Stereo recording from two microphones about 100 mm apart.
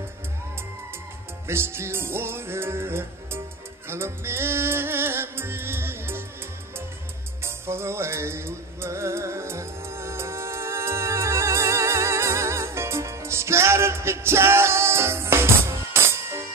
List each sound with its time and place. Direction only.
1.5 s music: 25° right (ahead or behind)
7.4 s music: 25° right (ahead or behind)